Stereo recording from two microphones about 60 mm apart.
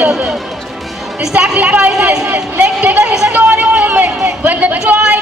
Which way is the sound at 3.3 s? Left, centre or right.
Right.